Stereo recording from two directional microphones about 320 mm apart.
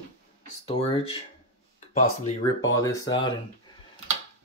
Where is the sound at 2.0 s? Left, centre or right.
Centre.